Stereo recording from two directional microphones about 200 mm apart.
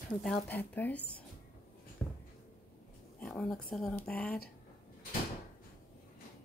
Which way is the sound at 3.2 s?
5° left (ahead or behind).